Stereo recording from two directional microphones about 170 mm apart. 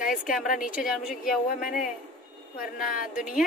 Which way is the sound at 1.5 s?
55° left (ahead or behind).